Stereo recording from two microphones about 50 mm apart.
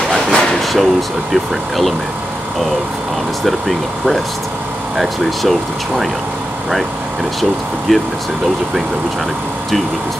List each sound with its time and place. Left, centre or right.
0.1 s a sound: centre
1.3 s speech: centre
3.4 s speech: centre
7.9 s speech: centre